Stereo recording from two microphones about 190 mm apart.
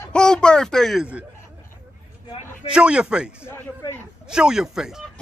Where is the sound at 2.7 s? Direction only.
5° right (ahead or behind).